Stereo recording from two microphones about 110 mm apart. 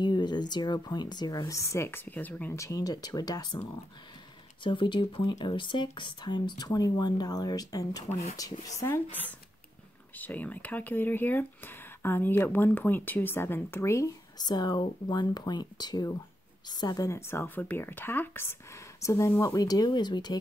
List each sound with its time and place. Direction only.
0.0 s speech: 40° left (ahead or behind); by 2.5 s 15° left (ahead or behind)
2.5 s speech: 30° left (ahead or behind)
4.6 s a woman's voice: 50° left (ahead or behind); by 14.1 s 25° left (ahead or behind)
14.4 s a woman's voice: 40° left (ahead or behind)